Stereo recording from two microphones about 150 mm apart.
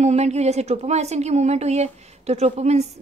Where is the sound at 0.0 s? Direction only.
45° right (ahead or behind).